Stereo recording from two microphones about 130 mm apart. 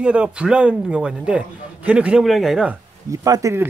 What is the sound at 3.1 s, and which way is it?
Speech, 25° right (ahead or behind).